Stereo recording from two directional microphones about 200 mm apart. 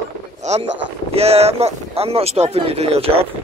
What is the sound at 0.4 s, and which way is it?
Speech, 35° right (ahead or behind).